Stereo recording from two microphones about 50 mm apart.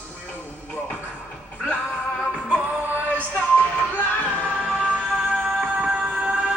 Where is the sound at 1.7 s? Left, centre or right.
Left.